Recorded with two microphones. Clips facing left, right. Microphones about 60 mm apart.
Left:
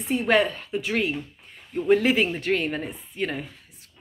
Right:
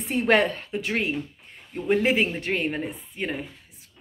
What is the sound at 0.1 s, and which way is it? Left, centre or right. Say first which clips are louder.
Speech: even; right.